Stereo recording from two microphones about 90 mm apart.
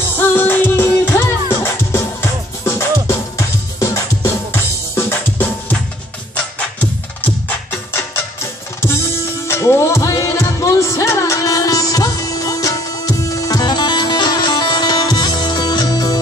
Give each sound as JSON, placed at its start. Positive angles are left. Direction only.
{"t": 0.1, "sound": "music", "side_deg": 25}
{"t": 9.5, "sound": "music", "side_deg": 30}